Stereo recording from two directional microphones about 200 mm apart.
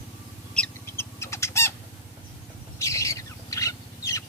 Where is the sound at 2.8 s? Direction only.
15° left (ahead or behind).